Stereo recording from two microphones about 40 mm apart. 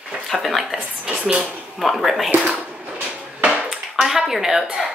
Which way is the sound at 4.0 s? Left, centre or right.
Centre.